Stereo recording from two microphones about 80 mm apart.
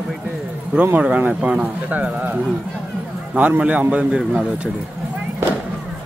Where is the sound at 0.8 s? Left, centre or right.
Centre.